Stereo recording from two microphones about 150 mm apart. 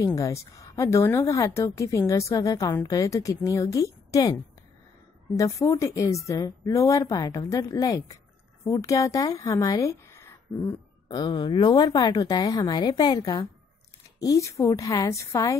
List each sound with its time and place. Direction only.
0.0 s a woman's voice: 20° left (ahead or behind)
11.1 s a woman's voice: 30° left (ahead or behind)